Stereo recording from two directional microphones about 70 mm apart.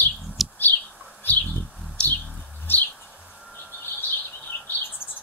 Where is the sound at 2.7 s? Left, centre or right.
Left.